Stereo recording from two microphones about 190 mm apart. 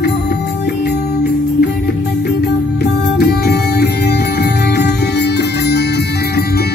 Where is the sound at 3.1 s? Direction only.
60° left (ahead or behind).